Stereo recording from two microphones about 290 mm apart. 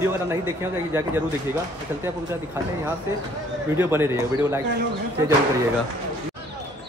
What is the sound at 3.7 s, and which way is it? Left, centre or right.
Speech, centre.